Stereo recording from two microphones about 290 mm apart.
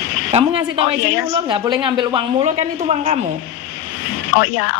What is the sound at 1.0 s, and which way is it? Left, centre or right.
Speech, left.